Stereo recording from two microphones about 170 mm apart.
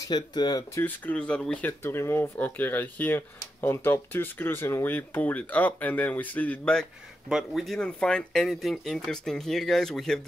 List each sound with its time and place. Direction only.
0.1 s speech: 25° left (ahead or behind)
0.8 s speech: 10° left (ahead or behind)